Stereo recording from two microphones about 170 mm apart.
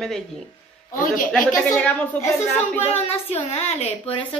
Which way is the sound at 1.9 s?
10° left (ahead or behind).